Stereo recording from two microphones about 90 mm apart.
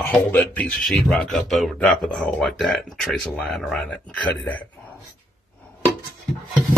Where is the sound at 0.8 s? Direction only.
5° left (ahead or behind).